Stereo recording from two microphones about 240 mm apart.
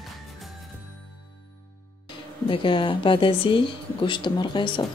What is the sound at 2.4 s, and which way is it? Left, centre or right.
A woman's voice, left.